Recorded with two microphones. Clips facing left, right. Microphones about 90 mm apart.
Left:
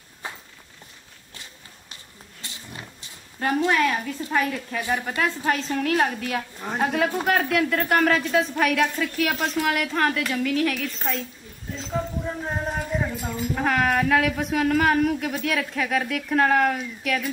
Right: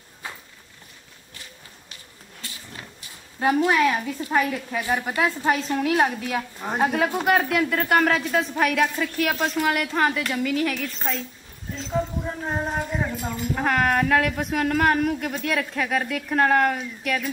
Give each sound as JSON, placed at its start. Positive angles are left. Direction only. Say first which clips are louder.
{"t": 2.4, "sound": "roaring cats", "louder": "left 1 dB", "side_deg": 25}
{"t": 3.3, "sound": "a woman's voice", "louder": "right 2 dB", "side_deg": -10}
{"t": 6.6, "sound": "a woman's voice", "louder": "right 3 dB", "side_deg": -15}
{"t": 6.9, "sound": "speech", "louder": "even", "side_deg": 0}
{"t": 11.7, "sound": "a sound", "louder": "right 2 dB", "side_deg": 0}
{"t": 12.6, "sound": "speech", "louder": "even", "side_deg": 0}